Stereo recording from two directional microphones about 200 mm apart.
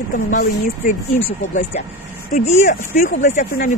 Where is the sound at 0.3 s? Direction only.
40° left (ahead or behind).